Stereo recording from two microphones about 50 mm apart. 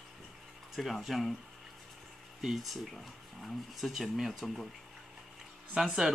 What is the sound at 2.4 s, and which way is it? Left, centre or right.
Speech, centre.